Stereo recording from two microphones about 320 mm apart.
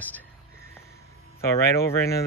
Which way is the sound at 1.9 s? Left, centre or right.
Centre.